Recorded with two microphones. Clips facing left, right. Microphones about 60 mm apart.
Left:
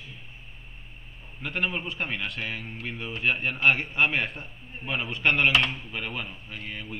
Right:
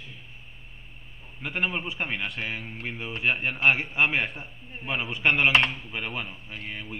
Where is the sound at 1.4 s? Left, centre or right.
Centre.